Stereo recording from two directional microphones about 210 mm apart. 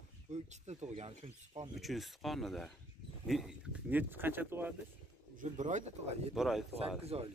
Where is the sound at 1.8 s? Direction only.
Centre (ahead or behind).